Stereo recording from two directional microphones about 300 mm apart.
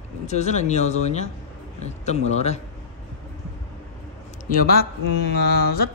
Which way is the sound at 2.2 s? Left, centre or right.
Left.